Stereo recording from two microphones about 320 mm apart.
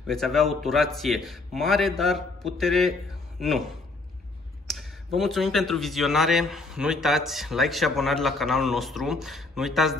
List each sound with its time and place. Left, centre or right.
0.0 s a man's voice: centre